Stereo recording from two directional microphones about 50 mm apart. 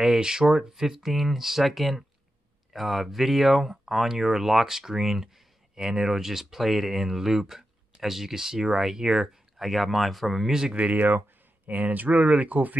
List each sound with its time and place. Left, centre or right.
0.0 s speech: centre
10.8 s speech: right